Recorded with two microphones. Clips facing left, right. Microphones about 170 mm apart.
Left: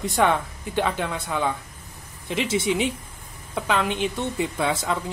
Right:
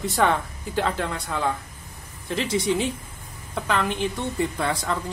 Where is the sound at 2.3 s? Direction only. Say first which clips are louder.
Even; 20° left (ahead or behind).